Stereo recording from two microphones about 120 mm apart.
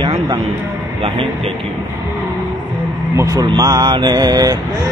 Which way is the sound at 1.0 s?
50° right (ahead or behind).